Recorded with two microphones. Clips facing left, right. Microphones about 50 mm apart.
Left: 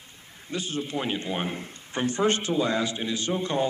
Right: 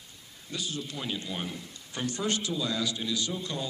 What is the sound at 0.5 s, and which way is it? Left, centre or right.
A man's voice, left.